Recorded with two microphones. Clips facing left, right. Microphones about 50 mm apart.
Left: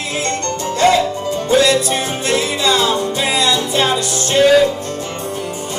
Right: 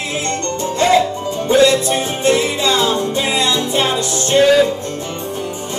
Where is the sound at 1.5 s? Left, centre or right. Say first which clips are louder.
Right 2 dB; right.